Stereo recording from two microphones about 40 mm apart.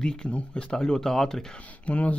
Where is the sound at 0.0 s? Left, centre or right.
Left.